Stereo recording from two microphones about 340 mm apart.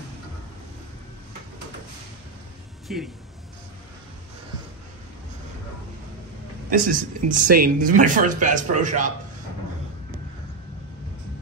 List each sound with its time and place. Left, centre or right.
2.9 s speech: centre
6.7 s speech: right